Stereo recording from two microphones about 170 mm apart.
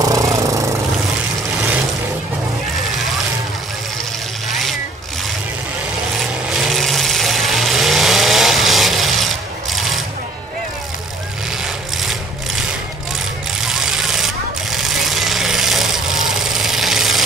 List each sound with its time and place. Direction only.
0.0 s vehicle: 20° right (ahead or behind)
4.5 s vehicle: centre (ahead or behind)
6.5 s vehicle: centre (ahead or behind)
13.6 s vehicle: centre (ahead or behind)